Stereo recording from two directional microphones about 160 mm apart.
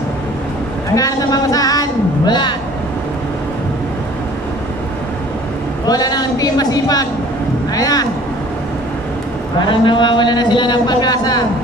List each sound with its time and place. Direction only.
0.9 s a man's voice: 20° left (ahead or behind)
5.9 s a man's voice: 25° left (ahead or behind)
9.6 s a man's voice: 30° left (ahead or behind)